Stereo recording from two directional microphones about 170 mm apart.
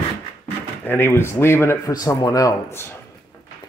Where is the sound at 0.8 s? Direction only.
15° left (ahead or behind).